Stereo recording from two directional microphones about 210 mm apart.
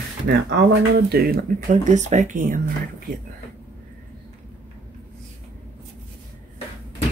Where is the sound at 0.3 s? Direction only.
50° right (ahead or behind).